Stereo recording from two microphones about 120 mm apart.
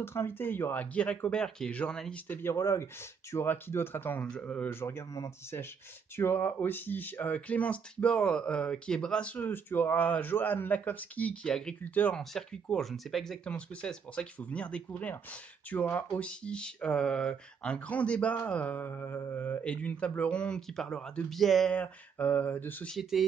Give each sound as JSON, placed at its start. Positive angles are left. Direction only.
{"t": 0.0, "sound": "speech", "side_deg": 20}
{"t": 22.9, "sound": "speech", "side_deg": 0}